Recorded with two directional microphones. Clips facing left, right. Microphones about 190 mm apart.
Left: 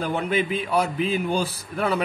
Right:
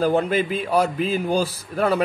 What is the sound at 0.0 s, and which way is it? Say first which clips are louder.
A man's voice: right 5 dB; 40° right (ahead or behind).